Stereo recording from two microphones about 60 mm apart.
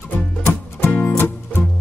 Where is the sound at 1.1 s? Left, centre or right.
Left.